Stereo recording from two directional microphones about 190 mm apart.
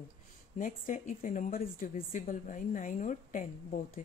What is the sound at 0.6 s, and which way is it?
A woman's voice, 45° left (ahead or behind).